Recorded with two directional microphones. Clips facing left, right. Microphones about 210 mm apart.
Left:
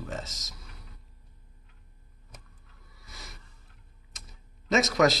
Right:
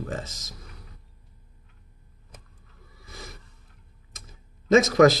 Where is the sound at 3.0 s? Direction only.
55° right (ahead or behind).